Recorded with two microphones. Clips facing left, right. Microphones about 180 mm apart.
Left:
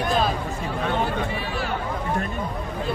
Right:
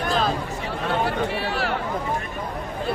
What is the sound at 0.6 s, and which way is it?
Chatter, 75° right (ahead or behind).